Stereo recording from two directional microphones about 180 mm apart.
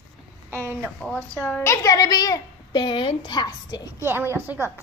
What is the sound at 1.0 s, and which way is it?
A woman's voice, 5° left (ahead or behind).